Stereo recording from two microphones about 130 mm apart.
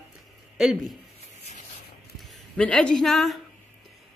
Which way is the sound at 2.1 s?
5° left (ahead or behind).